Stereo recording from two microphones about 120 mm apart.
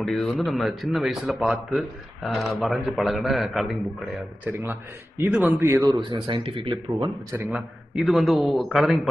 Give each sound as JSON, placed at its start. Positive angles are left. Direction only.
{"t": 0.0, "sound": "a man's voice", "side_deg": 5}
{"t": 4.5, "sound": "a man's voice", "side_deg": -20}
{"t": 5.9, "sound": "speech", "side_deg": -40}
{"t": 7.4, "sound": "a man's voice", "side_deg": -5}